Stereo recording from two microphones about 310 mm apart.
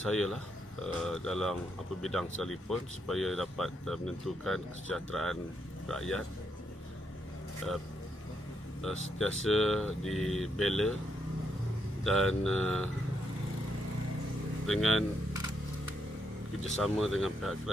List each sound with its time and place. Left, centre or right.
1.0 s speech: centre
7.6 s speech: centre
9.2 s speech: centre
12.0 s speech: centre
14.7 s speech: centre
16.6 s speech: centre